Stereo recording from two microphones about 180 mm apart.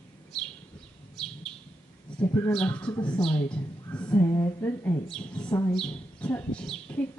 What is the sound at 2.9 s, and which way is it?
A man's voice, 25° left (ahead or behind).